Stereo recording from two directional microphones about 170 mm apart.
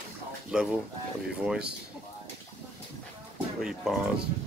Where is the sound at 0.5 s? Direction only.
5° right (ahead or behind).